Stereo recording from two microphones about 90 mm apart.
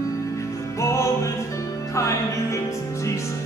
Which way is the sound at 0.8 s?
35° left (ahead or behind).